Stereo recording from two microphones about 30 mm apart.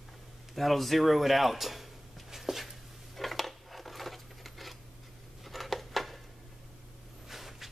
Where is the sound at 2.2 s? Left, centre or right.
Centre.